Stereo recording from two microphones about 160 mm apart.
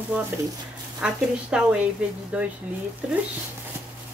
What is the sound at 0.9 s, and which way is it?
Speech, 5° right (ahead or behind).